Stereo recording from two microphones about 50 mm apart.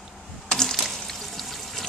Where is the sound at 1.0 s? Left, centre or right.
Centre.